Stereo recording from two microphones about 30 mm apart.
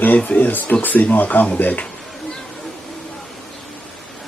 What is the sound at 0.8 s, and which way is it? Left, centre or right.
Speech, left.